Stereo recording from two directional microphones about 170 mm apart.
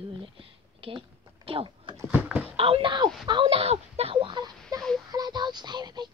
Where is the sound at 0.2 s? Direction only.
30° right (ahead or behind).